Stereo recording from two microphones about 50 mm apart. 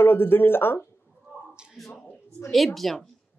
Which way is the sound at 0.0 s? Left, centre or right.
Left.